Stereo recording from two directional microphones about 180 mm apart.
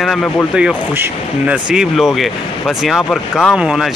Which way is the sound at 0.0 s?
Centre (ahead or behind).